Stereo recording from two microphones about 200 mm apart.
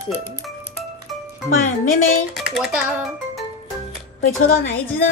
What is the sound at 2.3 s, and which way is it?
Speech, centre (ahead or behind).